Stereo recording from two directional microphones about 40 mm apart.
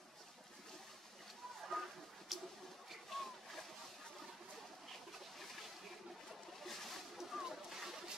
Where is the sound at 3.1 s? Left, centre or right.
Centre.